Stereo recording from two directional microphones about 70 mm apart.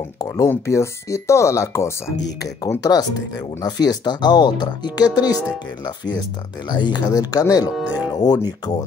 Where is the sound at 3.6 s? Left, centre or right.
Left.